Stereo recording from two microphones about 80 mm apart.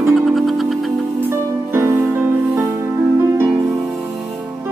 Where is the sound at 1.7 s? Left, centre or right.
Right.